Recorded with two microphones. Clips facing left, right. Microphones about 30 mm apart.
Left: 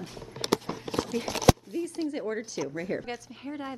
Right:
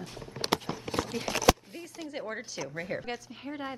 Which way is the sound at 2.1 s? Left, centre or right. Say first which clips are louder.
Left 5 dB; centre.